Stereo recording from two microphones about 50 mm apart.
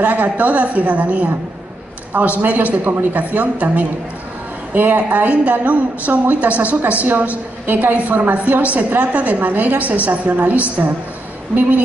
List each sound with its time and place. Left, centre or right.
0.0 s a woman's voice: right
2.8 s a woman's voice: right